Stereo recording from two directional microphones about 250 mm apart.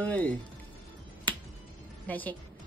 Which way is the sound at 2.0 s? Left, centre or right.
Centre.